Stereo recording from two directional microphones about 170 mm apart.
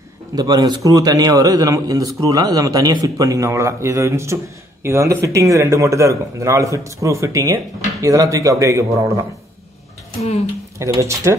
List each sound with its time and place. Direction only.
0.4 s a man's voice: 25° right (ahead or behind)
10.8 s speech: 15° right (ahead or behind)